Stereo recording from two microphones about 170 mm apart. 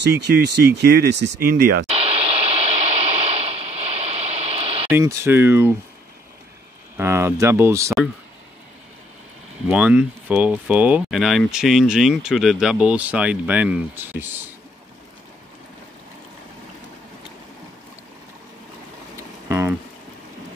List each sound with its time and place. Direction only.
0.0 s speech: 75° right (ahead or behind)
2.0 s radio: 35° right (ahead or behind)
4.8 s speech: 15° right (ahead or behind)
7.0 s speech: 15° right (ahead or behind)
9.7 s speech: 10° right (ahead or behind)
19.1 s a sound: 15° right (ahead or behind)